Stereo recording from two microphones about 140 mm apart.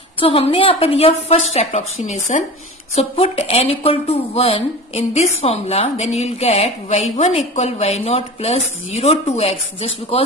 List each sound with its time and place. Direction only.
0.2 s speech: 40° left (ahead or behind)